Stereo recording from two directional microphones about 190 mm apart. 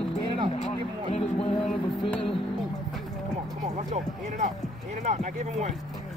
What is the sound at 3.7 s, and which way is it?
Speech, 40° right (ahead or behind).